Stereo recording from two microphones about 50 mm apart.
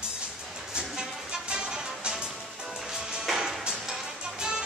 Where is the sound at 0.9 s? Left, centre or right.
Centre.